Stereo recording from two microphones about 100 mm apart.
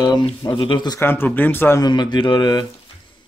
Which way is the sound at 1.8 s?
50° left (ahead or behind).